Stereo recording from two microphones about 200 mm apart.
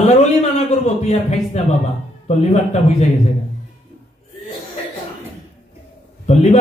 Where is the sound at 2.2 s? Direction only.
35° left (ahead or behind).